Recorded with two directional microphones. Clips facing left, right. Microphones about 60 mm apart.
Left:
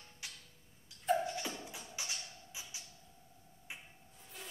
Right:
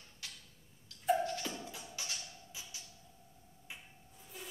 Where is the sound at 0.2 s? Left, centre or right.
Left.